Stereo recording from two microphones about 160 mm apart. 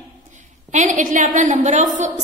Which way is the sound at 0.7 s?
50° right (ahead or behind).